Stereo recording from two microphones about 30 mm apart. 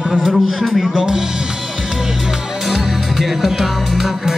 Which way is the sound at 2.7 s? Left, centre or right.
Centre.